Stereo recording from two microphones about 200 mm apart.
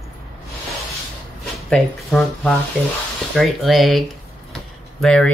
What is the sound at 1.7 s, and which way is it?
Speech, 5° left (ahead or behind).